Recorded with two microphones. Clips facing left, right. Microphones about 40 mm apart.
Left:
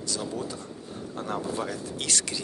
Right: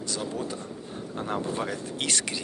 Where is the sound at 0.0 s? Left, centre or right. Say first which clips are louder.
Right 1 dB; right.